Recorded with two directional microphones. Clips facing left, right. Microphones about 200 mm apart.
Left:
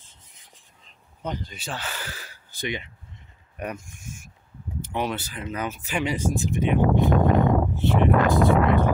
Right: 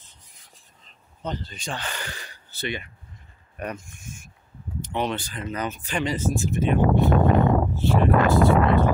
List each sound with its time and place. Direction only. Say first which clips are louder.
0.0 s rub: even; 20° left (ahead or behind)
1.2 s speech: even; 10° left (ahead or behind)